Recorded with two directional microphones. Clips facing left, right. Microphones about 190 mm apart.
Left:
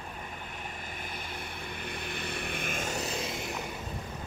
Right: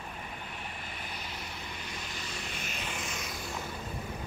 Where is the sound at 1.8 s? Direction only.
60° left (ahead or behind); by 3.4 s 30° left (ahead or behind).